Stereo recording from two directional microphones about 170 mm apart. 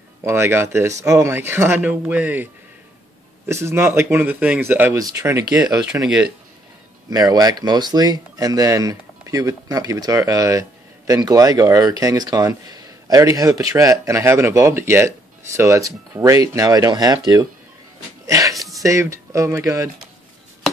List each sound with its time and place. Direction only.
0.2 s speech: 15° right (ahead or behind)
7.1 s speech: 20° right (ahead or behind)
18.2 s a sound: 20° right (ahead or behind)
18.8 s speech: 20° right (ahead or behind)